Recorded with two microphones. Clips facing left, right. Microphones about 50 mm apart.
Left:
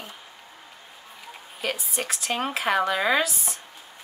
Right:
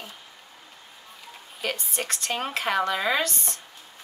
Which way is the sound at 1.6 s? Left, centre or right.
Centre.